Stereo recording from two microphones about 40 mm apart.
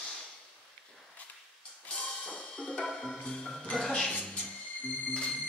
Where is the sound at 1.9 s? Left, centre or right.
Left.